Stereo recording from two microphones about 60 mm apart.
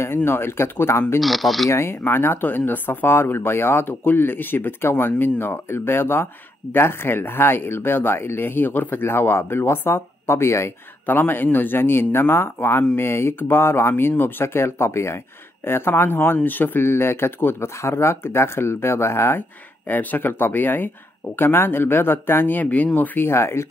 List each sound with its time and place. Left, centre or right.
0.0 s speech: left
1.2 s speech: centre
1.7 s speech: left
11.1 s speech: left
19.9 s speech: left